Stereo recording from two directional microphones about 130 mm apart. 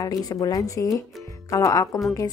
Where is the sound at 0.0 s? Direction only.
30° left (ahead or behind).